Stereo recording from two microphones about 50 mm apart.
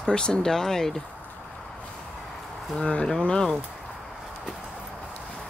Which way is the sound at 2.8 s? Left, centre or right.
Centre.